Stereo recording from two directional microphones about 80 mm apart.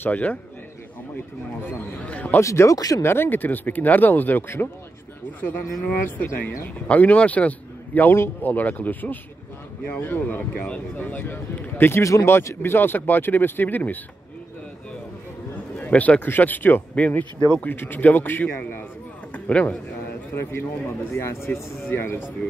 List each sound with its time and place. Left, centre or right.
0.0 s speech: left
2.4 s speech: left
12.0 s speech: left
12.3 s speech: left
15.8 s a man's voice: centre
21.1 s speech: left